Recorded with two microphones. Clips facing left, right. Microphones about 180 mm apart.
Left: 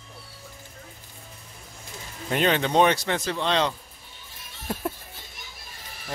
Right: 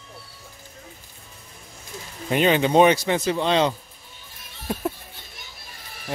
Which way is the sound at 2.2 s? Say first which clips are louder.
Right 4 dB; 5° right (ahead or behind).